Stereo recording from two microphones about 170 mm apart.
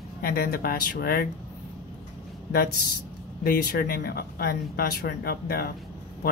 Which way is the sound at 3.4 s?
60° left (ahead or behind).